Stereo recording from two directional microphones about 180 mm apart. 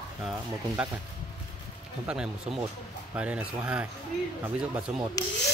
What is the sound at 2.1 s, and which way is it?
Speech, 5° right (ahead or behind).